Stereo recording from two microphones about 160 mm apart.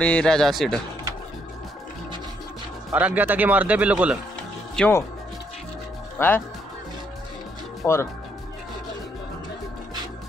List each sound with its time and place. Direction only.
0.0 s speech: 5° left (ahead or behind)
2.9 s speech: 5° right (ahead or behind)
4.8 s speech: 5° left (ahead or behind)
6.1 s speech: 15° left (ahead or behind)
7.8 s speech: 15° left (ahead or behind)